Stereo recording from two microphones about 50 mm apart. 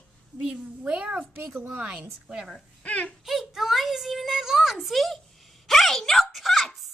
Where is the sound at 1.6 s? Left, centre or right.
Right.